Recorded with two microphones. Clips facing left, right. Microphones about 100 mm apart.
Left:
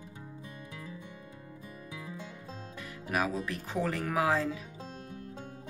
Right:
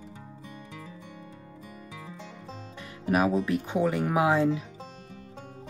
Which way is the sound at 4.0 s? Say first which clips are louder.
Right 5 dB; 25° right (ahead or behind).